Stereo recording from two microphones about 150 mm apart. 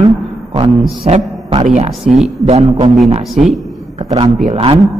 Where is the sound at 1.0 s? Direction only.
45° right (ahead or behind).